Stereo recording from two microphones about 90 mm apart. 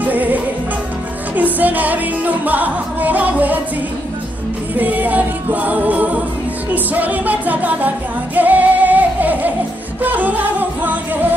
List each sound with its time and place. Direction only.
0.0 s music: 20° right (ahead or behind)
4.7 s music: 20° right (ahead or behind)